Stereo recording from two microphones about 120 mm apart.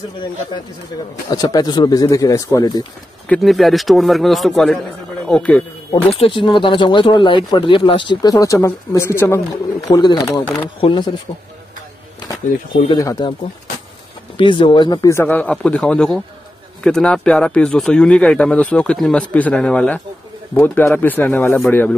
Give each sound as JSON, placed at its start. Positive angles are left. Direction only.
{"t": 1.3, "sound": "speech", "side_deg": 30}
{"t": 3.4, "sound": "speech", "side_deg": 0}
{"t": 6.1, "sound": "speech", "side_deg": 45}
{"t": 10.6, "sound": "speech", "side_deg": 45}
{"t": 12.9, "sound": "speech", "side_deg": 35}
{"t": 14.3, "sound": "speech", "side_deg": 45}
{"t": 15.2, "sound": "speech", "side_deg": 15}